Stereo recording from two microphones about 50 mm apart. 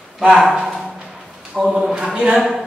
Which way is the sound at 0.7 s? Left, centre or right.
Centre.